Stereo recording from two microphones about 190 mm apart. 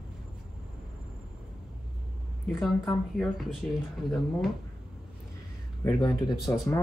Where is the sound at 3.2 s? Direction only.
Centre (ahead or behind).